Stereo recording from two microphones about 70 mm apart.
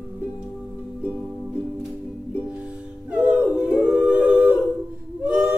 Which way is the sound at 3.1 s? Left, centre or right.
Centre.